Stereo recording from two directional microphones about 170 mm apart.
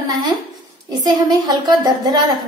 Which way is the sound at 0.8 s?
25° right (ahead or behind).